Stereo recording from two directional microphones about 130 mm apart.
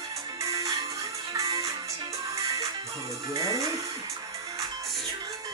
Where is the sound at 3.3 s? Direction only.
25° right (ahead or behind).